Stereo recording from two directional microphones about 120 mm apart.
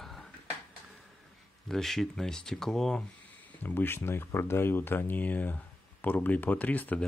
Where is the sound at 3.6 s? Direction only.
15° left (ahead or behind).